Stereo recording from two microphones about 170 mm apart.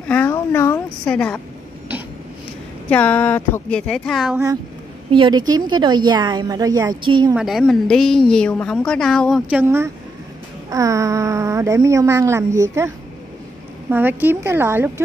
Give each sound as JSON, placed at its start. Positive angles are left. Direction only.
{"t": 0.1, "sound": "a sound", "side_deg": 10}
{"t": 2.9, "sound": "speech", "side_deg": 10}
{"t": 3.8, "sound": "a woman's voice", "side_deg": 0}
{"t": 5.1, "sound": "a woman's voice", "side_deg": -30}
{"t": 7.3, "sound": "a woman's voice", "side_deg": 0}
{"t": 9.5, "sound": "a woman's voice", "side_deg": -10}